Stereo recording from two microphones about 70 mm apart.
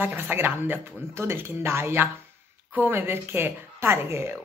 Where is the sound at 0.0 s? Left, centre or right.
Right.